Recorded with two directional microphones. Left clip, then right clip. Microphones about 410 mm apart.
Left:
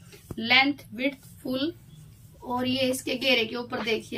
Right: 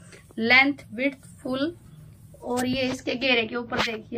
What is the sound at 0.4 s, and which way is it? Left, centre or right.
A woman's voice, centre.